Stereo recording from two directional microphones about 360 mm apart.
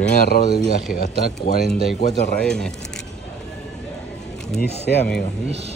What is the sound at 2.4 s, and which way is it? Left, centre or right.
Speech, centre.